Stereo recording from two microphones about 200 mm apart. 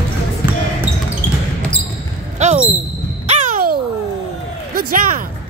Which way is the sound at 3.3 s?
45° right (ahead or behind).